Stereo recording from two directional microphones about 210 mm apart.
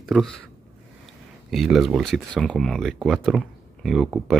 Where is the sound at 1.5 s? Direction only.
Centre (ahead or behind).